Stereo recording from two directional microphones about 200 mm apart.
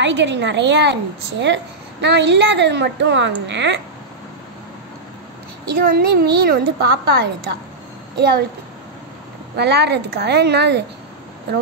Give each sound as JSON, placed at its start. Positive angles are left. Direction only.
{"t": 0.0, "sound": "a woman's voice", "side_deg": -65}
{"t": 5.7, "sound": "a woman's voice", "side_deg": -50}
{"t": 9.6, "sound": "a woman's voice", "side_deg": -55}